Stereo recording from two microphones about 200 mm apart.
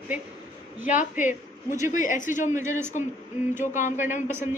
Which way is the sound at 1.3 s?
15° right (ahead or behind).